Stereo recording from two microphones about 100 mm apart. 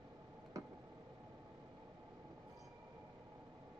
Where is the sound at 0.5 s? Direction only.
35° right (ahead or behind).